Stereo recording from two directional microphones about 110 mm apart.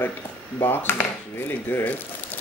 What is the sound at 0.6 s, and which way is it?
Speech, 20° left (ahead or behind).